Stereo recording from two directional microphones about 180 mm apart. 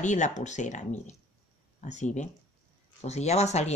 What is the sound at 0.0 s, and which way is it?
Speech, 40° left (ahead or behind).